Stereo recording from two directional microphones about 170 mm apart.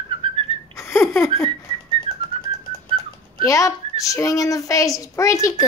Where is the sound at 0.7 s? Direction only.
15° left (ahead or behind).